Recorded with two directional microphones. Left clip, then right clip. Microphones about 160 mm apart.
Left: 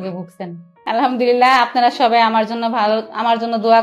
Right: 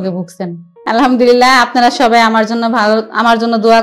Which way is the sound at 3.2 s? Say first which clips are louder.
Right 6 dB; 40° right (ahead or behind).